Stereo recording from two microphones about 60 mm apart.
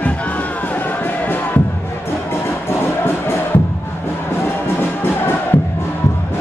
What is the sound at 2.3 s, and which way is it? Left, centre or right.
Music, left.